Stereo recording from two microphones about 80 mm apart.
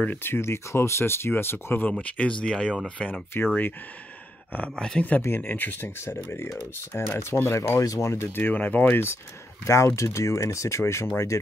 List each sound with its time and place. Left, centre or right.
0.0 s speech: left
1.9 s speech: centre
3.0 s speech: left
4.5 s speech: centre; by 8.5 s left
8.5 s speech: left
9.7 s speech: left